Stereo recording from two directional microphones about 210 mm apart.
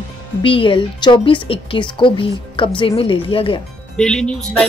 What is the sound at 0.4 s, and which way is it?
A woman's voice, 25° left (ahead or behind).